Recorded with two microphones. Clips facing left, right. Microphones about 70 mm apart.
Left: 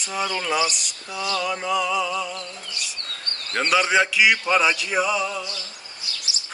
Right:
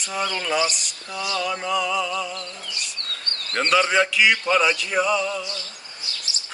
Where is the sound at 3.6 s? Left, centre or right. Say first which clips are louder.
Even; centre.